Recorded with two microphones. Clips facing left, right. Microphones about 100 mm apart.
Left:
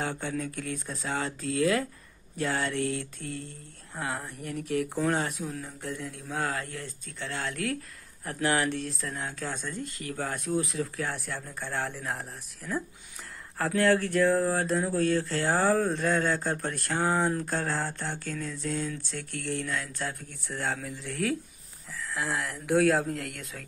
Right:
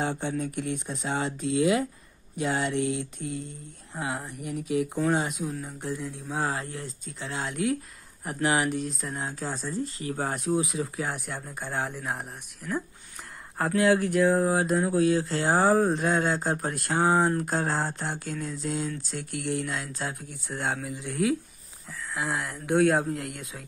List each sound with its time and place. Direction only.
0.0 s speech: 25° right (ahead or behind); by 5.8 s 10° right (ahead or behind)
5.8 s speech: 25° right (ahead or behind)
6.0 s speech: 10° right (ahead or behind)
6.4 s speech: 25° right (ahead or behind)
9.8 s speech: 25° right (ahead or behind)
10.5 s speech: 5° right (ahead or behind)
11.2 s speech: 15° right (ahead or behind)
11.8 s speech: 5° right (ahead or behind)
13.8 s speech: 15° right (ahead or behind)
21.2 s speech: 5° right (ahead or behind)